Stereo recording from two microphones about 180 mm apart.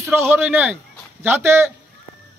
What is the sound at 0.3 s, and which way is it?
A man's voice, 10° right (ahead or behind).